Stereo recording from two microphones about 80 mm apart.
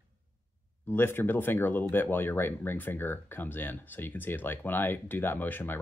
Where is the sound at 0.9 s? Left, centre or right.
Left.